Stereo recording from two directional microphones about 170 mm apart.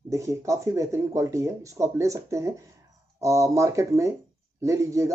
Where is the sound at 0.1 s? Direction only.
20° right (ahead or behind).